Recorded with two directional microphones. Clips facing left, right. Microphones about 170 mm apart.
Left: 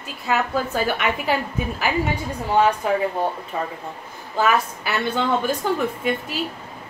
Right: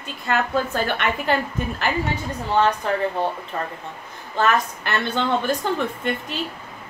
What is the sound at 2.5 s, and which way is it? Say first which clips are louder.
Child singing: left 2 dB; 10° left (ahead or behind).